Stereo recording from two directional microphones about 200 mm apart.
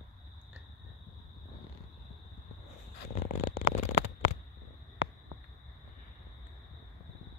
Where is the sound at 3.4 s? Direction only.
50° left (ahead or behind).